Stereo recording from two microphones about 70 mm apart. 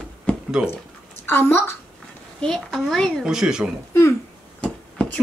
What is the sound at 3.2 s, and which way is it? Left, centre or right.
Speech, centre.